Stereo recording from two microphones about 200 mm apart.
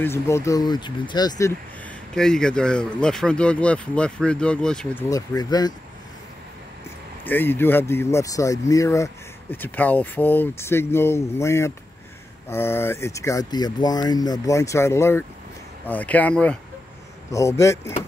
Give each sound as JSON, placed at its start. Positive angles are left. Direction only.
{"t": 0.0, "sound": "speech", "side_deg": 15}
{"t": 1.4, "sound": "speech", "side_deg": 5}
{"t": 5.1, "sound": "speech", "side_deg": 20}
{"t": 7.2, "sound": "speech", "side_deg": 10}